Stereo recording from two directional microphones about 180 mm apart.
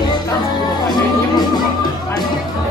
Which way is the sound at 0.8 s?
20° left (ahead or behind).